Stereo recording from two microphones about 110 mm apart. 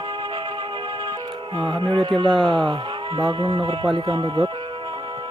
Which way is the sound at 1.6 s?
45° right (ahead or behind).